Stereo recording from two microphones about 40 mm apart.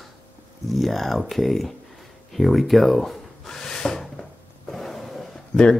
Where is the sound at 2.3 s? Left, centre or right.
Centre.